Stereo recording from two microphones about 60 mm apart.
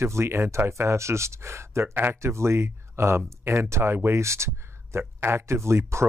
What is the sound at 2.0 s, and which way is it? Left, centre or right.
Speech, right.